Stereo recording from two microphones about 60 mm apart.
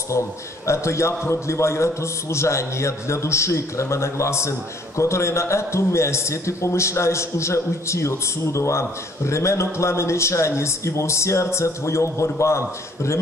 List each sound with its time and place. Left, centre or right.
0.7 s a man's voice: left